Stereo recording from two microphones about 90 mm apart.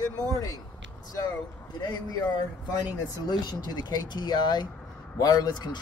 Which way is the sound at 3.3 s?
50° left (ahead or behind).